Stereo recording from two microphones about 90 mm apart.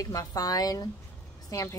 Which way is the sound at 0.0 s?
40° left (ahead or behind).